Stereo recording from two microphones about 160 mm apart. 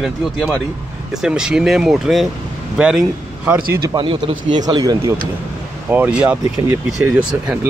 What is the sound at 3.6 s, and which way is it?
Speech, 70° right (ahead or behind).